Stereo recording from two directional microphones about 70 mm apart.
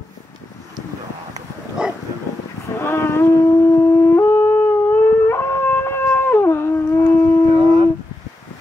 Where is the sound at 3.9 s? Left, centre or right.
Left.